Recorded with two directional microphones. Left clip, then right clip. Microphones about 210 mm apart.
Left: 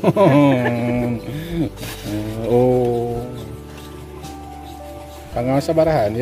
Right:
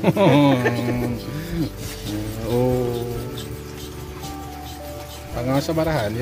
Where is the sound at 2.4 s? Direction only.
35° left (ahead or behind).